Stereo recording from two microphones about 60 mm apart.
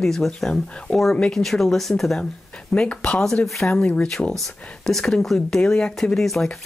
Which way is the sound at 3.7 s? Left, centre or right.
Left.